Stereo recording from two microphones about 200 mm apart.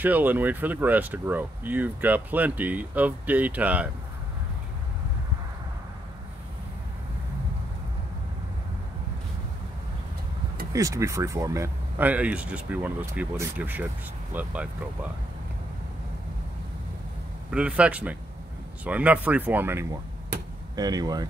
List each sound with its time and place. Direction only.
0.0 s speech: 10° right (ahead or behind)
10.7 s speech: 15° right (ahead or behind)
17.5 s a man's voice: 5° right (ahead or behind)